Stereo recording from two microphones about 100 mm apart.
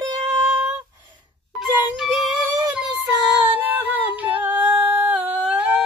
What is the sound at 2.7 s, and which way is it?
Child singing, 15° right (ahead or behind).